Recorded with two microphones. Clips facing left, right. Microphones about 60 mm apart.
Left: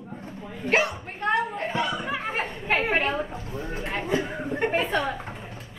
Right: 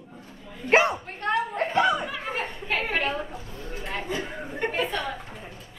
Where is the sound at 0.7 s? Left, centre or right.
Right.